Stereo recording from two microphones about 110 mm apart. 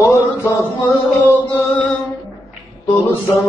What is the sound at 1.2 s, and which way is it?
Music, 15° left (ahead or behind).